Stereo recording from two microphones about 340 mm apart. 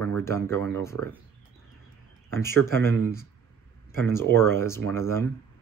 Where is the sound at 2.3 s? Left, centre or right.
Centre.